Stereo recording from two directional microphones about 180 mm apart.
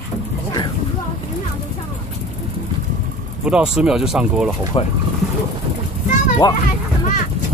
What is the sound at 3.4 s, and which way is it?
Speech, 5° right (ahead or behind).